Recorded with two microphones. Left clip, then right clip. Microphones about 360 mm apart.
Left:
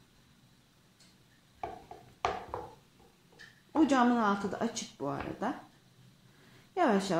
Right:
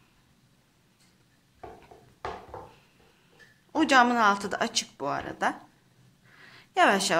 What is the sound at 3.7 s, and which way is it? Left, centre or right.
A woman's voice, right.